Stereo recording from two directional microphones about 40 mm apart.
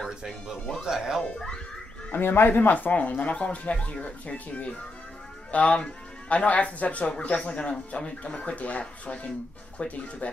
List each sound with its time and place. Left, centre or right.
0.8 s speech: centre
2.1 s speech: left
2.9 s speech: left